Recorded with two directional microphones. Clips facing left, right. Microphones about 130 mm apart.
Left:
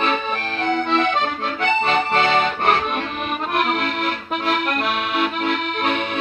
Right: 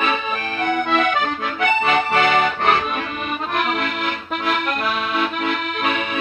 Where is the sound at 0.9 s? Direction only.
30° left (ahead or behind).